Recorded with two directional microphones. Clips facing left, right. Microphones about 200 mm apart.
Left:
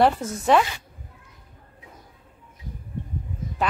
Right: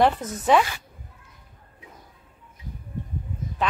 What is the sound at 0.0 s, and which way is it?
Speech, centre (ahead or behind).